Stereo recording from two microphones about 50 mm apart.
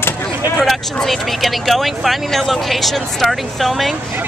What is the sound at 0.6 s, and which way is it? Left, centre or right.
Speech, centre.